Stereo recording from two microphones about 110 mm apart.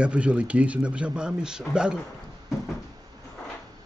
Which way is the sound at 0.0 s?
10° right (ahead or behind).